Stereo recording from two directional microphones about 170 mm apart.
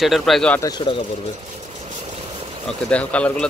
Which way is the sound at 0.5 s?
25° left (ahead or behind).